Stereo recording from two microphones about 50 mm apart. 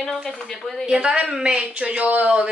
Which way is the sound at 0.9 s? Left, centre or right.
Centre.